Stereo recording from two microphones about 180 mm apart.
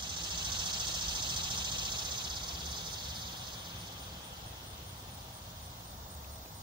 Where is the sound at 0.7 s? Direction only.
25° right (ahead or behind).